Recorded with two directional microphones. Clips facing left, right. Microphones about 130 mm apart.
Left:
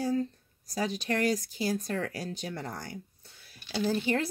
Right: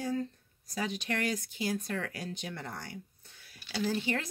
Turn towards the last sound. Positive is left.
turn(degrees=35)  # may be behind; listen again after turning